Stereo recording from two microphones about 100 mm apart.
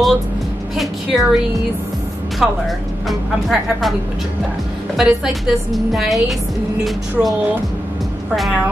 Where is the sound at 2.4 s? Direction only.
5° right (ahead or behind).